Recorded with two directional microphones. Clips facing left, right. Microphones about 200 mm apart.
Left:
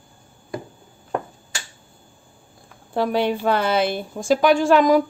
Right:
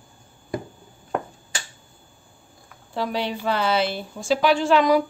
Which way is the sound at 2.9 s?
55° left (ahead or behind).